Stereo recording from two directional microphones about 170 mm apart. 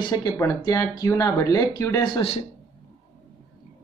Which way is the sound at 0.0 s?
20° left (ahead or behind).